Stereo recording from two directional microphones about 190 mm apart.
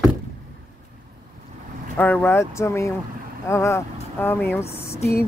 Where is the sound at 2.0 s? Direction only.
10° left (ahead or behind).